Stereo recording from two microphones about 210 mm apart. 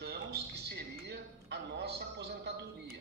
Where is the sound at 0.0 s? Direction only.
50° right (ahead or behind).